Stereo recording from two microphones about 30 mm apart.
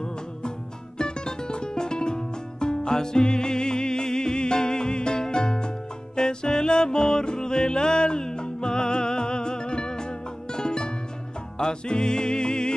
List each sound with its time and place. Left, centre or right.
0.9 s music: left